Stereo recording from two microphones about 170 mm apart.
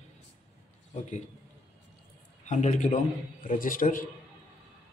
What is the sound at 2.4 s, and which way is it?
A man's voice, 45° left (ahead or behind).